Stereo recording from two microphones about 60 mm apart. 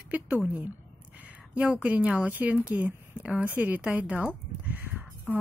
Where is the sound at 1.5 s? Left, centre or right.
Right.